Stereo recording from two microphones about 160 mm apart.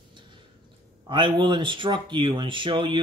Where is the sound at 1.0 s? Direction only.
30° right (ahead or behind).